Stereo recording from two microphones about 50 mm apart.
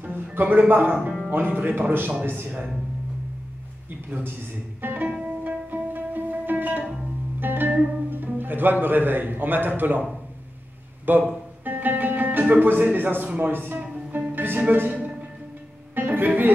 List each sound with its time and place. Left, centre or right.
0.1 s a man's voice: right
4.8 s a man's voice: right
5.2 s music: right
7.3 s speech: right
11.1 s a man's voice: right
11.6 s music: right
13.4 s a man's voice: right
13.7 s music: right
14.6 s a man's voice: right
16.1 s speech: right